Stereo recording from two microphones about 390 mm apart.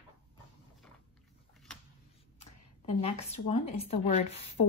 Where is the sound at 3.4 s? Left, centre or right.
Centre.